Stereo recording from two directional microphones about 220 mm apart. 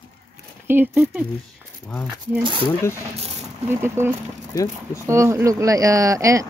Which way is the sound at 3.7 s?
10° right (ahead or behind).